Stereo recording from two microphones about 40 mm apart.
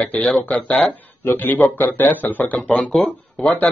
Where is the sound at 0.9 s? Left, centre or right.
Left.